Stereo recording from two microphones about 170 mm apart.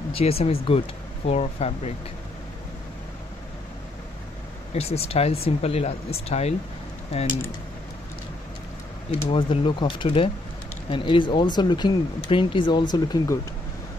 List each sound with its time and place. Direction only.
0.1 s speech: 35° left (ahead or behind)
4.7 s speech: 35° left (ahead or behind)
9.3 s speech: 30° left (ahead or behind)